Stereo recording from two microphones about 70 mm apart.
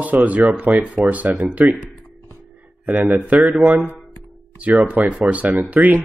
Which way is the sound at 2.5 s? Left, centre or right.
Centre.